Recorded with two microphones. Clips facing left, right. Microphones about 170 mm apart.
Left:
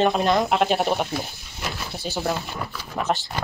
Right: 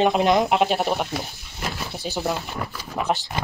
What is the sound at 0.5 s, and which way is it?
Speech, centre (ahead or behind).